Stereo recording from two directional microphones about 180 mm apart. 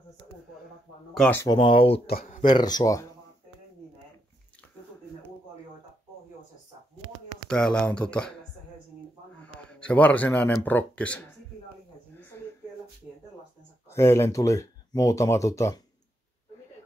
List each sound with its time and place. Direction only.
1.1 s speech: 5° left (ahead or behind)
1.4 s speech: 25° left (ahead or behind)
2.0 s speech: 50° left (ahead or behind)
2.5 s speech: 20° left (ahead or behind)
7.4 s speech: 5° left (ahead or behind)
9.4 s speech: 5° left (ahead or behind)
12.3 s a sound: 15° left (ahead or behind)
13.0 s a sound: 10° right (ahead or behind)
13.8 s speech: 15° left (ahead or behind)